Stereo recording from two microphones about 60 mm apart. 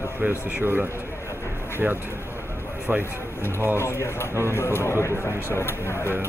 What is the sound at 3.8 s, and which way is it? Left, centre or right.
Speech, left.